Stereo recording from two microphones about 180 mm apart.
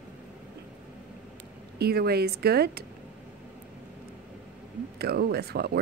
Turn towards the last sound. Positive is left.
turn(degrees=-60)  # may be behind; listen again after turning